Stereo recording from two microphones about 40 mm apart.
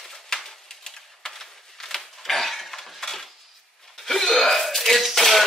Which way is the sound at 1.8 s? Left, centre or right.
Centre.